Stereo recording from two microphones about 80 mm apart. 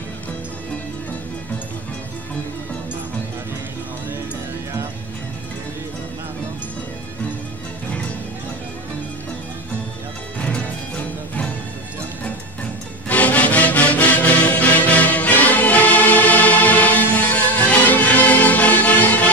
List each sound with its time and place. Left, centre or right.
10.4 s music: centre
13.1 s music: centre